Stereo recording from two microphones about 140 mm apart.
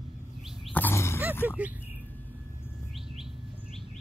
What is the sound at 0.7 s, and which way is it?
Roaring cats, 15° left (ahead or behind).